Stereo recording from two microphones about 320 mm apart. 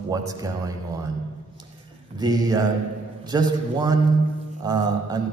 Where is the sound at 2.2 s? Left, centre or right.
Centre.